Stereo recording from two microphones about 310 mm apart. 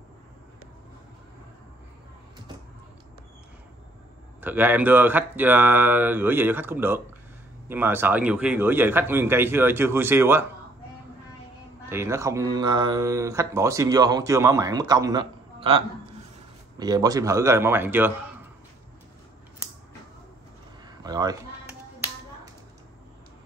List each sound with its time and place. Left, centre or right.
4.4 s speech: centre
11.9 s speech: centre
21.0 s a sound: centre